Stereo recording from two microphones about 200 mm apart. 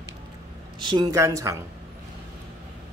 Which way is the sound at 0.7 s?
25° right (ahead or behind).